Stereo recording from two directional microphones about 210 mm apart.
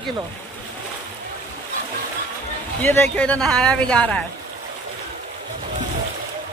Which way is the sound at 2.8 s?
10° left (ahead or behind).